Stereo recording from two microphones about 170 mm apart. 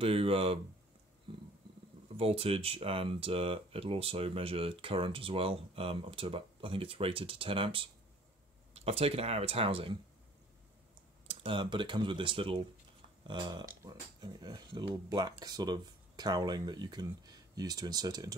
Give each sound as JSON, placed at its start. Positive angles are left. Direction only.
{"t": 0.0, "sound": "speech", "side_deg": -35}
{"t": 1.3, "sound": "a sound", "side_deg": -35}
{"t": 2.1, "sound": "speech", "side_deg": -35}
{"t": 11.2, "sound": "speech", "side_deg": -30}